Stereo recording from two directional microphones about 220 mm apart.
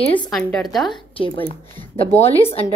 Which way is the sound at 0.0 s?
20° left (ahead or behind).